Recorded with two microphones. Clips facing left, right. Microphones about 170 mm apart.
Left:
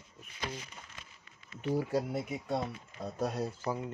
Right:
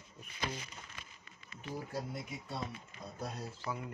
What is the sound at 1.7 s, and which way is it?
Speech, 75° left (ahead or behind).